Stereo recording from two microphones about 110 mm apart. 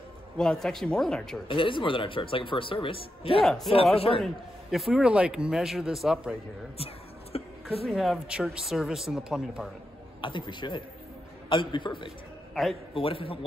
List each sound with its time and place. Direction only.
0.4 s a man's voice: 5° left (ahead or behind)
1.5 s speech: 50° left (ahead or behind)
3.3 s a man's voice: 5° left (ahead or behind)
3.9 s a man's voice: 60° left (ahead or behind)
4.2 s a man's voice: centre (ahead or behind)
7.3 s a sound: 65° left (ahead or behind)
7.8 s a man's voice: centre (ahead or behind)
10.2 s a man's voice: 45° left (ahead or behind)